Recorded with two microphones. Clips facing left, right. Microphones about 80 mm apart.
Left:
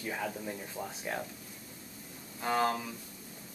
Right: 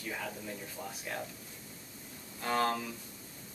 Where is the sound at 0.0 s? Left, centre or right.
Centre.